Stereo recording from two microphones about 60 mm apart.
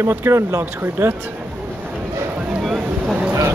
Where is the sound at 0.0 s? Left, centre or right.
Right.